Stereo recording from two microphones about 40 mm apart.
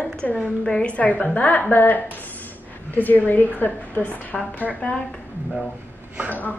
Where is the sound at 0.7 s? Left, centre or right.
Left.